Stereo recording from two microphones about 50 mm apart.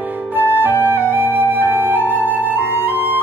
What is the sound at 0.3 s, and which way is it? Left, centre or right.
Flute, right.